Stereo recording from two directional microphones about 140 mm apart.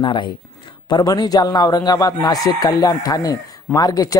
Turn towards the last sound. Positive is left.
turn(degrees=25)  # may be behind; listen again after turning